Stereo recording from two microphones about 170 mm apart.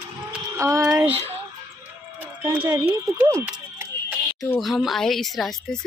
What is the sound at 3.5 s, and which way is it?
Music, 10° right (ahead or behind).